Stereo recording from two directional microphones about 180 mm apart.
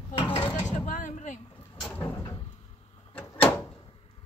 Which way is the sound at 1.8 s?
10° left (ahead or behind).